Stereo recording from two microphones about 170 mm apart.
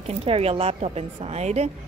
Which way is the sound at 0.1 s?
35° right (ahead or behind).